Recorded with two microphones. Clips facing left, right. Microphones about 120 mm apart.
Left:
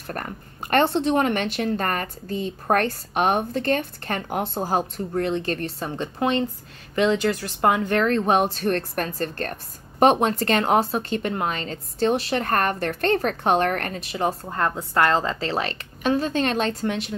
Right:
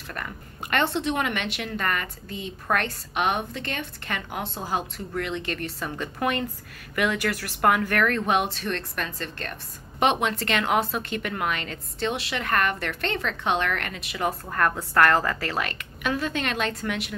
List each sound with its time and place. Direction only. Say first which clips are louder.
0.0 s speech: left 4 dB; 45° left (ahead or behind)